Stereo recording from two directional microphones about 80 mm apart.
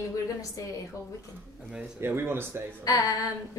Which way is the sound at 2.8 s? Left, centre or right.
Left.